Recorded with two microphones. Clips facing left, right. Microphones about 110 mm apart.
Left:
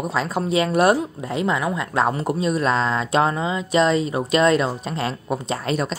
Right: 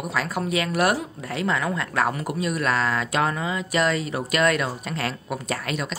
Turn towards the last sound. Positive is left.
turn(degrees=25)  # may be behind; listen again after turning